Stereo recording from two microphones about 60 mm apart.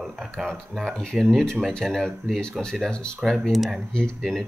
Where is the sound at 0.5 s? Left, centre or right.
Centre.